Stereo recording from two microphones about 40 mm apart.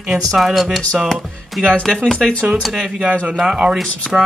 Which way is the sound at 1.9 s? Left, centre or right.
Centre.